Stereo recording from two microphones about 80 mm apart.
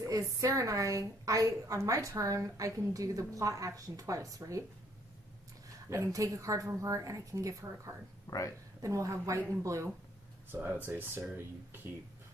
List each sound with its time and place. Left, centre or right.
0.0 s a woman's voice: right
5.9 s a woman's voice: right
8.3 s speech: left
8.8 s a woman's voice: right
10.5 s speech: right